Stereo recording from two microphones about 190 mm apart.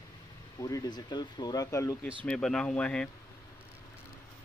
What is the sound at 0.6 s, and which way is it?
Speech, 20° left (ahead or behind).